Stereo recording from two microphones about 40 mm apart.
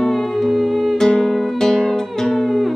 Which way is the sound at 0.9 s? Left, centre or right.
Left.